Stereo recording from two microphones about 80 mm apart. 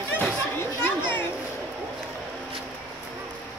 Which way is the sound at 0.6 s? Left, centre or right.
Left.